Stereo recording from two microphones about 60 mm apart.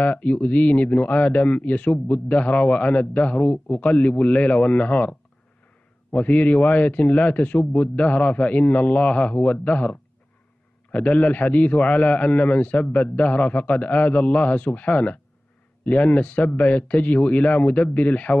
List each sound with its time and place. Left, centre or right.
0.0 s speech: left
6.1 s speech: left